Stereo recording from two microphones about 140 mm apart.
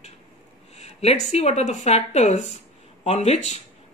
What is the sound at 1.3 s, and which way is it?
Speech, 50° left (ahead or behind).